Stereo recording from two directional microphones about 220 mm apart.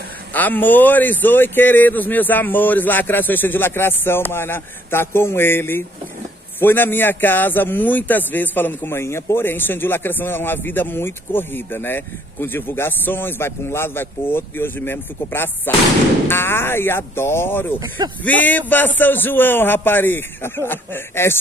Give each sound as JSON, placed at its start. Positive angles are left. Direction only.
{"t": 0.3, "sound": "a man's voice", "side_deg": 10}
{"t": 17.7, "sound": "speech", "side_deg": -20}
{"t": 18.2, "sound": "a man's voice", "side_deg": 10}